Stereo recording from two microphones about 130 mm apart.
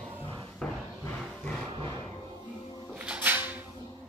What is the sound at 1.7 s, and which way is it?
Roar, 40° right (ahead or behind).